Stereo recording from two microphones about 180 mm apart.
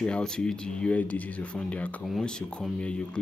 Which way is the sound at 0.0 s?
5° left (ahead or behind).